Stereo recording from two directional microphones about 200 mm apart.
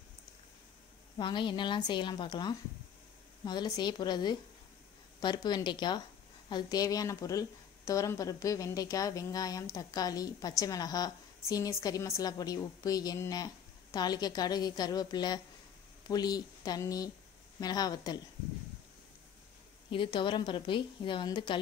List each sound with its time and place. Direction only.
1.1 s a woman's voice: 25° left (ahead or behind)
19.9 s a woman's voice: 25° left (ahead or behind)